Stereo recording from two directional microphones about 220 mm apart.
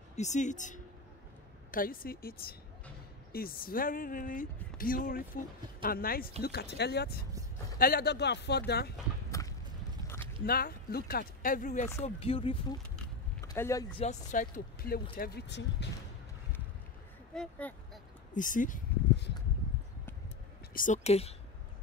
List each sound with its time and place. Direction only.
0.1 s speech: 30° left (ahead or behind); by 8.9 s 45° left (ahead or behind)
9.3 s a sound: 15° left (ahead or behind)
10.4 s speech: 45° left (ahead or behind); by 12.5 s 25° left (ahead or behind)
13.5 s speech: 15° left (ahead or behind)
13.9 s speech: 30° left (ahead or behind); by 15.9 s 50° left (ahead or behind)
17.3 s speech: 5° left (ahead or behind)
18.3 s speech: 35° left (ahead or behind)
20.7 s speech: 35° left (ahead or behind)